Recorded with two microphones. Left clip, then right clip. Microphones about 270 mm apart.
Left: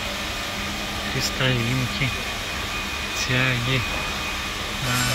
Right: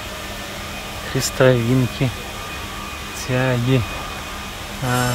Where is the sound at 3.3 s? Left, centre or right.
Centre.